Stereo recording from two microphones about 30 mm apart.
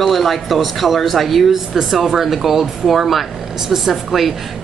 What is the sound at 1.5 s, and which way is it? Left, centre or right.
A woman's voice, centre.